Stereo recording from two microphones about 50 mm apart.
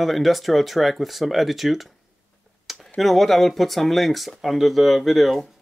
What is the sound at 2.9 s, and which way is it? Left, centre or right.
Speech, centre.